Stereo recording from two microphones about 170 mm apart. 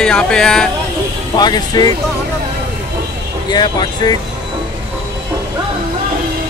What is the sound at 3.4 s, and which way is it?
Speech, 25° left (ahead or behind).